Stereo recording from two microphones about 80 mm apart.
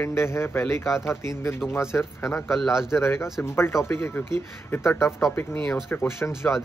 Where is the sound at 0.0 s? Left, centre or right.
Left.